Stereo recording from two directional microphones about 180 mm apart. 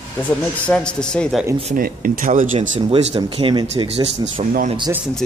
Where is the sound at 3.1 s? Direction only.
25° right (ahead or behind).